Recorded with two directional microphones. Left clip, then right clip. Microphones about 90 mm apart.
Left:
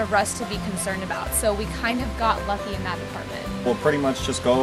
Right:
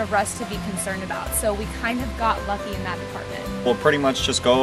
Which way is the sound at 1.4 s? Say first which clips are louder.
Left 1 dB; 10° left (ahead or behind).